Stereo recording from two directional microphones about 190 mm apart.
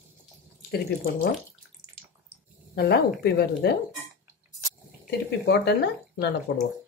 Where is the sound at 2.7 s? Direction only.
55° left (ahead or behind).